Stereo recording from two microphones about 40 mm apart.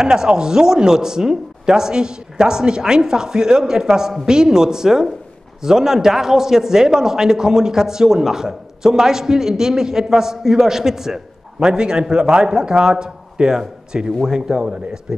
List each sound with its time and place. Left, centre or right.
0.0 s a man's voice: centre
14.6 s a man's voice: right